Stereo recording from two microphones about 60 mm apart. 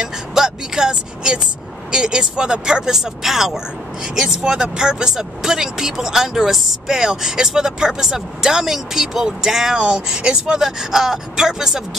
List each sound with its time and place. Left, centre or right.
0.0 s vehicle: centre
1.9 s speech: centre